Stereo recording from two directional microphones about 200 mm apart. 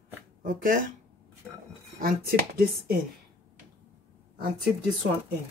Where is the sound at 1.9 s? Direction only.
45° right (ahead or behind).